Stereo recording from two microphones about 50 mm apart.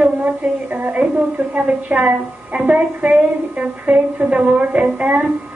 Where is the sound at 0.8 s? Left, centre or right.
Centre.